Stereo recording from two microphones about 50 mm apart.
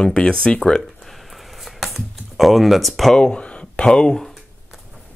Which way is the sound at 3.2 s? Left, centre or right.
Centre.